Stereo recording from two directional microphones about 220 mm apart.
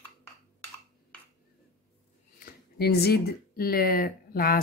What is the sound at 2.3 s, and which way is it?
Speech, 45° left (ahead or behind).